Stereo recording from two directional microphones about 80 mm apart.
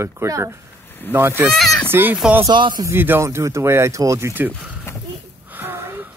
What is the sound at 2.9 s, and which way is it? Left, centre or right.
Speech, right.